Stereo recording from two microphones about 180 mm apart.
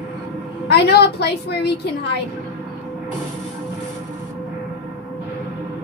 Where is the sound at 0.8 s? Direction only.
65° left (ahead or behind).